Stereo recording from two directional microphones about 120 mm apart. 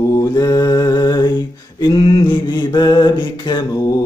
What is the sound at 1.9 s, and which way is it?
Mantra, 50° left (ahead or behind).